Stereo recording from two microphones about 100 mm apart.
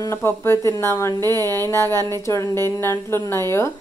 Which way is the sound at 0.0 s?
25° left (ahead or behind).